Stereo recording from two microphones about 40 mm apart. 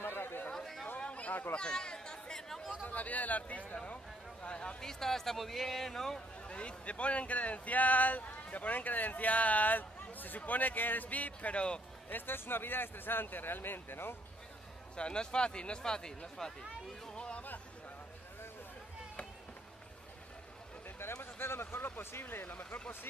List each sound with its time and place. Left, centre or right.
0.0 s chatter: left
0.5 s chatter: centre
0.9 s a sound: left
1.5 s speech: left
2.8 s a man's voice: left
4.8 s speech: centre
6.4 s speech: left
11.5 s speech: left
12.1 s speech: left
15.0 s speech: left
17.1 s speech: left
21.0 s speech: left